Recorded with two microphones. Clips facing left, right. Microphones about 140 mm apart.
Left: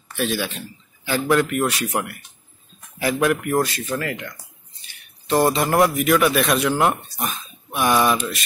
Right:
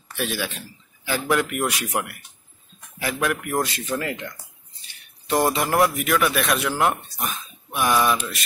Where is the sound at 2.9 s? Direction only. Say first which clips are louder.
Left 5 dB; 5° left (ahead or behind).